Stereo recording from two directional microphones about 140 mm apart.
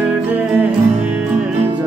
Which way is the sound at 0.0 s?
10° right (ahead or behind).